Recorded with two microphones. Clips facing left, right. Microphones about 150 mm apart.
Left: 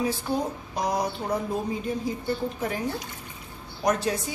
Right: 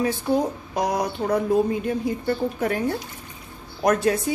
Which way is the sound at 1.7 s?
65° right (ahead or behind).